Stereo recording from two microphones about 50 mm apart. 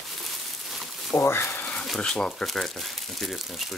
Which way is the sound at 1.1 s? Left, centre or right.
Left.